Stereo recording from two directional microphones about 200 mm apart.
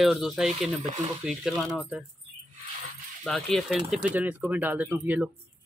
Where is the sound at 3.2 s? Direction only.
Centre (ahead or behind).